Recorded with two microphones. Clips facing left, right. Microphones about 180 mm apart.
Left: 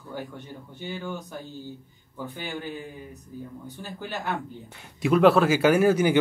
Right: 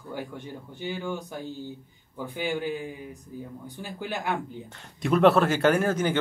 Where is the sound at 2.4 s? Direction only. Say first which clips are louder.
Right 8 dB; 10° right (ahead or behind).